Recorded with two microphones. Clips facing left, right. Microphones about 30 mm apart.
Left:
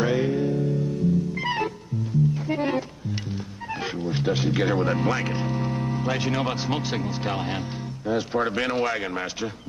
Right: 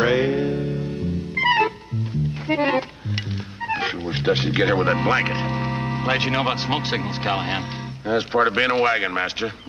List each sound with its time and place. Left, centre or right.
0.0 s music: right
3.6 s a man's voice: right